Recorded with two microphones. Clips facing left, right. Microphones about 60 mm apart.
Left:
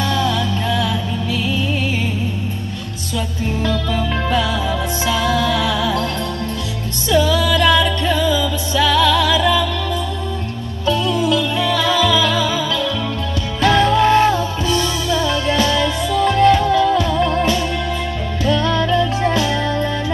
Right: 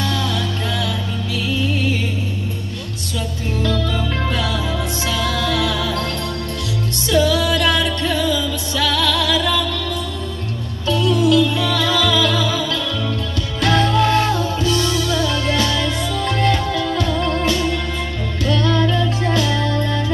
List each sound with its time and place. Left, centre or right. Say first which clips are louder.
0.0 s music: left 3 dB; left
4.3 s music: left 3 dB; left
7.1 s music: left 1 dB; left
10.9 s music: right 1 dB; left